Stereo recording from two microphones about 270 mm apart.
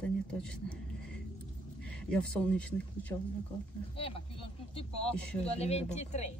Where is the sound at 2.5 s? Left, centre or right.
Centre.